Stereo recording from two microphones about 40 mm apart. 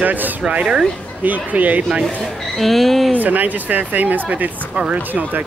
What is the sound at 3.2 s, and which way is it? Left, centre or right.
Speech, right.